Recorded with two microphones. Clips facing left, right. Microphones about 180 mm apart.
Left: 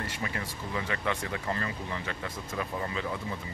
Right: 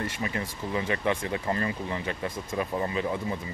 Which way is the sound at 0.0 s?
20° right (ahead or behind).